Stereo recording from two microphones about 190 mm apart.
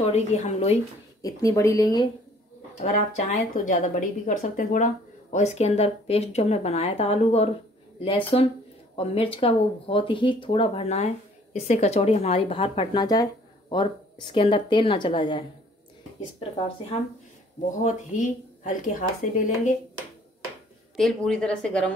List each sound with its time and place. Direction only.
0.0 s speech: 35° left (ahead or behind)
1.2 s speech: 15° left (ahead or behind)
2.8 s speech: 40° left (ahead or behind)
17.8 s a woman's voice: 40° left (ahead or behind)
20.9 s a woman's voice: 5° left (ahead or behind)